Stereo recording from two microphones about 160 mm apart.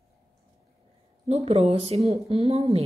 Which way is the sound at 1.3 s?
40° right (ahead or behind).